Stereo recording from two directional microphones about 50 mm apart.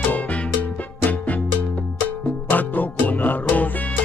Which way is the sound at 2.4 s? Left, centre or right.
Left.